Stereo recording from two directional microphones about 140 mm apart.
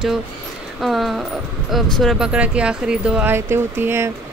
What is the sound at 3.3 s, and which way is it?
Speech, 15° right (ahead or behind).